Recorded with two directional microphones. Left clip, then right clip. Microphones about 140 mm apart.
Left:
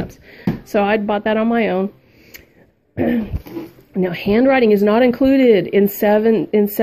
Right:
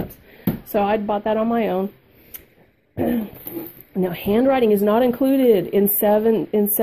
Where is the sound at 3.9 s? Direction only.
5° right (ahead or behind).